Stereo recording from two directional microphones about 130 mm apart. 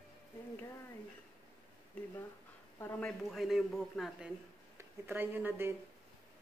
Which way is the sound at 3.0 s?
Centre (ahead or behind).